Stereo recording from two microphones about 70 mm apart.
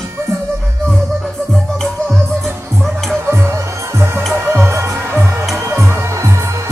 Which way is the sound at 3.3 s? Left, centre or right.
Right.